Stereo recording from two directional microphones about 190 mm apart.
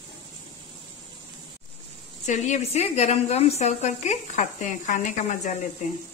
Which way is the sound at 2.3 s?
40° left (ahead or behind).